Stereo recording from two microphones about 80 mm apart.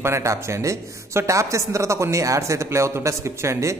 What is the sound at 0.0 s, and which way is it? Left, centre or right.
Speech, right.